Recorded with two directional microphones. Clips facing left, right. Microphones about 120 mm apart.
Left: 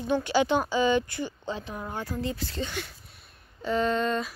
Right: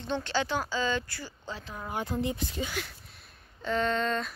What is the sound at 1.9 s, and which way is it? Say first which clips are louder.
Speech: right 2 dB; 20° right (ahead or behind).